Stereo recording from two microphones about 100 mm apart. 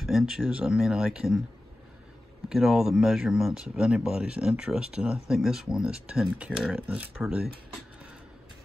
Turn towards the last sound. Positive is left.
turn(degrees=-5)  # may be behind; listen again after turning